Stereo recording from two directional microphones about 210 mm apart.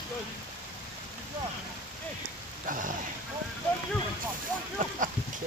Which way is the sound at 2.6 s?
40° right (ahead or behind).